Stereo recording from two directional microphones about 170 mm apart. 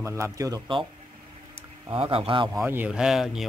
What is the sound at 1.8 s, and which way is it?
Speech, 30° right (ahead or behind).